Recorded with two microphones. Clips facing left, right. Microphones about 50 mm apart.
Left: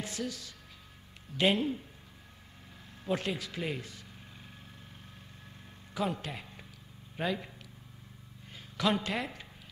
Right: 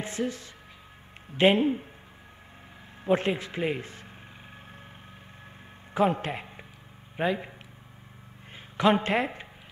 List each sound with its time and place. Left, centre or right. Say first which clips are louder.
0.0 s speech: right 6 dB; right
3.0 s speech: right 8 dB; right
5.9 s a man's voice: right 9 dB; right
8.7 s a woman's voice: right 8 dB; right